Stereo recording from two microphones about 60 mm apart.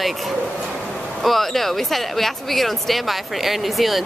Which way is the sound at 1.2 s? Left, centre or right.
Centre.